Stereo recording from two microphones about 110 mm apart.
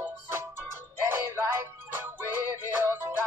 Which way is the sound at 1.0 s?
20° right (ahead or behind).